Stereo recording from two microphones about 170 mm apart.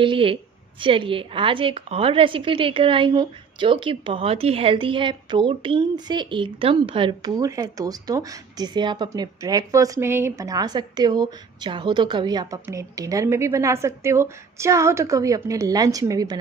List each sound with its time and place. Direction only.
0.0 s a woman's voice: 30° right (ahead or behind)